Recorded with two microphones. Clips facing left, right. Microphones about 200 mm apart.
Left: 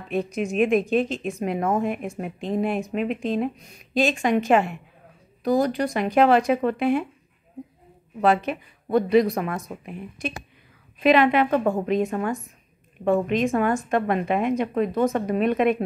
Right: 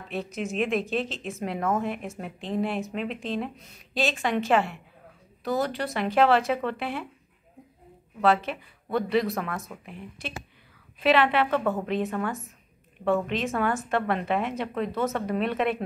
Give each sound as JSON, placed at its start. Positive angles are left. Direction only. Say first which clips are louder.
{"t": 0.1, "sound": "speech", "louder": "left 6 dB", "side_deg": 15}
{"t": 8.2, "sound": "speech", "louder": "left 3 dB", "side_deg": 15}